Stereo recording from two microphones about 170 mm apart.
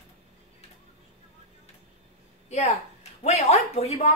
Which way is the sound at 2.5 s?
40° left (ahead or behind).